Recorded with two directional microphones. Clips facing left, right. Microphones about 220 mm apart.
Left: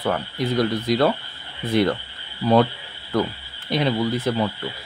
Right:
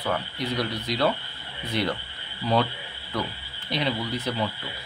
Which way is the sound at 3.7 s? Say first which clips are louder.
Left 6 dB; 50° left (ahead or behind).